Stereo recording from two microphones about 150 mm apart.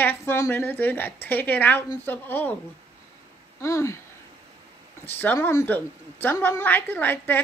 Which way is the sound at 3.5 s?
20° left (ahead or behind).